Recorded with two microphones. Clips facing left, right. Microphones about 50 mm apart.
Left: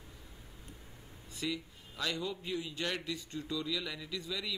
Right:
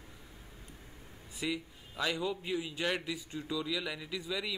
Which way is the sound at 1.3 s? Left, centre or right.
Centre.